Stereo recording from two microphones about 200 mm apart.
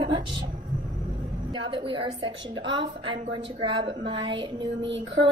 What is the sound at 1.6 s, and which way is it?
A woman's voice, 25° right (ahead or behind).